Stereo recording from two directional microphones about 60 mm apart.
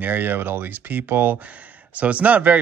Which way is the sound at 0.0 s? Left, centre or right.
Right.